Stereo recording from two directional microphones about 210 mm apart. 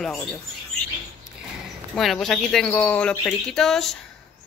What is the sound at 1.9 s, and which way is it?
Speech, centre (ahead or behind).